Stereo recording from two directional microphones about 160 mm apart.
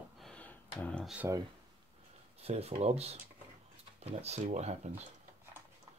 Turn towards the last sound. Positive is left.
turn(degrees=-40)  # may be behind; listen again after turning